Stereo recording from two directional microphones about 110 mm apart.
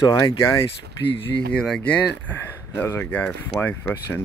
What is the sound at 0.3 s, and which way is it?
Speech, 55° left (ahead or behind).